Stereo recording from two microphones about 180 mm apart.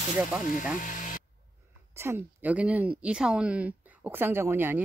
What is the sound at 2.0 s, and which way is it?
Speech, 10° right (ahead or behind).